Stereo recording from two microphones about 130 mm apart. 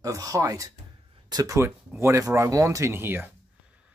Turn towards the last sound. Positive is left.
turn(degrees=-15)  # may be behind; listen again after turning